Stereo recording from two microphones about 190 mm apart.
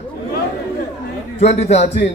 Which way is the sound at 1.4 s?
35° left (ahead or behind).